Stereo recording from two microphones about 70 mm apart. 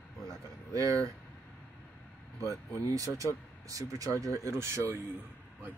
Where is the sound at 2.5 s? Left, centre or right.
Right.